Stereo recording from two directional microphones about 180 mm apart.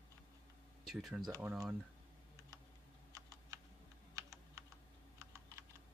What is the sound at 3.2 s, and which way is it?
Typing, 20° right (ahead or behind).